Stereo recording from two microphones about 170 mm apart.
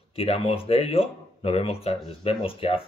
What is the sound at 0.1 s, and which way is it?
A man's voice, 35° left (ahead or behind).